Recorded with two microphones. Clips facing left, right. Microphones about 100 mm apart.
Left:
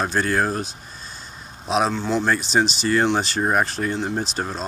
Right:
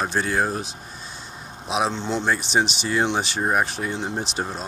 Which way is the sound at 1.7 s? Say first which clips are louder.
Left 3 dB; 15° right (ahead or behind).